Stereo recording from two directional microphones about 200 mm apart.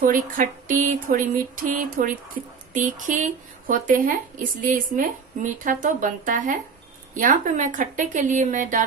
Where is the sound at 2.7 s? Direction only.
40° right (ahead or behind).